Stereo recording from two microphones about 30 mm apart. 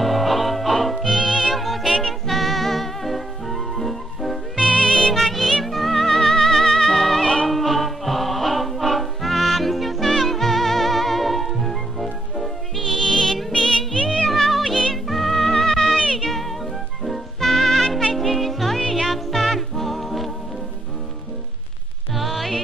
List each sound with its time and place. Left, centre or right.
0.0 s music: centre
1.5 s music: centre
2.0 s music: centre
2.3 s music: centre
4.6 s music: left
5.0 s music: centre
13.9 s music: left
14.2 s music: centre
14.5 s music: centre
22.1 s music: centre